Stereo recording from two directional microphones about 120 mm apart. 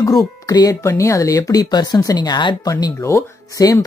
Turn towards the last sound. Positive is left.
turn(degrees=25)  # may be behind; listen again after turning